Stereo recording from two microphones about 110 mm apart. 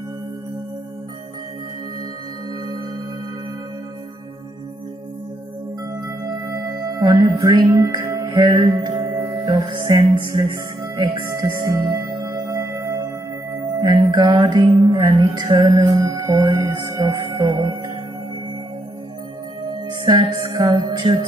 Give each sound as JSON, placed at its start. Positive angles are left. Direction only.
{"t": 6.0, "sound": "music", "side_deg": -30}
{"t": 8.3, "sound": "music", "side_deg": -40}
{"t": 19.7, "sound": "music", "side_deg": -40}